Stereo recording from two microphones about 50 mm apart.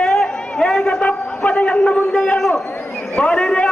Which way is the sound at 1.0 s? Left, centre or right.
Left.